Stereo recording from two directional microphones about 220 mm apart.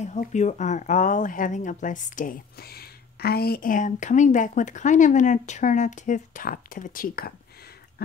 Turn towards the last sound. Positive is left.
turn(degrees=40)  # may be behind; listen again after turning